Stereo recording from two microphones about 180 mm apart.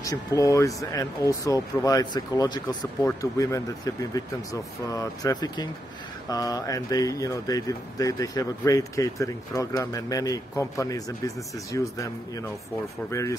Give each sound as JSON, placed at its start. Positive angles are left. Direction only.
{"t": 0.0, "sound": "speech", "side_deg": 20}